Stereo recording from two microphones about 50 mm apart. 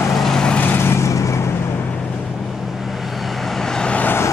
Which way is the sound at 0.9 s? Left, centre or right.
Left.